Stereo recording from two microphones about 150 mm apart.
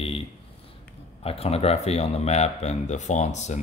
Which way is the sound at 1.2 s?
40° left (ahead or behind).